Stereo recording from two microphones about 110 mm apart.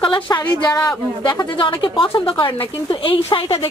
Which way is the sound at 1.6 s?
50° left (ahead or behind).